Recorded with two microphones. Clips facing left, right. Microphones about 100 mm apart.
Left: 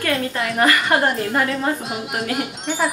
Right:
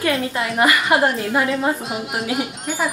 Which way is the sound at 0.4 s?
Centre (ahead or behind).